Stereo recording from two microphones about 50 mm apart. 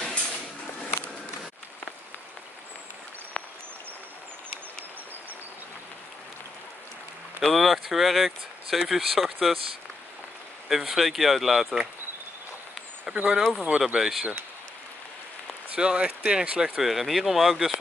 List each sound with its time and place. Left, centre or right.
3.4 s a sound: left
7.4 s speech: centre
10.7 s speech: centre
13.0 s speech: centre
13.3 s speech: centre
13.7 s speech: centre
15.7 s speech: centre
16.8 s speech: centre